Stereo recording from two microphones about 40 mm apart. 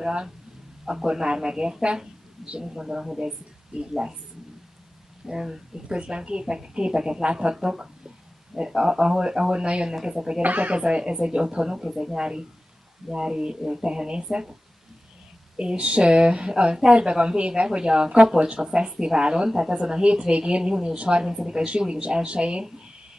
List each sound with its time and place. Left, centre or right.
0.0 s speech: centre
3.7 s speech: right
5.2 s speech: centre
10.4 s speech: right
10.8 s speech: right
15.5 s speech: right